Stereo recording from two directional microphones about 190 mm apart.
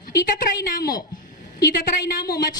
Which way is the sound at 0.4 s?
50° left (ahead or behind).